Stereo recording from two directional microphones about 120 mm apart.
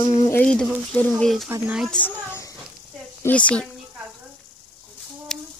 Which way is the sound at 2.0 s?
20° left (ahead or behind).